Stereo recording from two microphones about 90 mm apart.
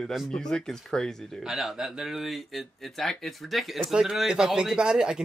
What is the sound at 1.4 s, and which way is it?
Speech, 5° right (ahead or behind).